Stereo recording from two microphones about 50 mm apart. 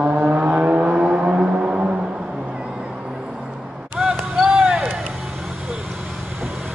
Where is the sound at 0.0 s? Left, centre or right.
Right.